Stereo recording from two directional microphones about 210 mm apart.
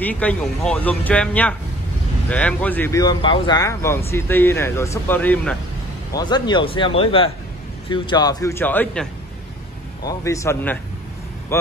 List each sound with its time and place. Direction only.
0.0 s speech: 5° left (ahead or behind)
6.1 s speech: 20° left (ahead or behind)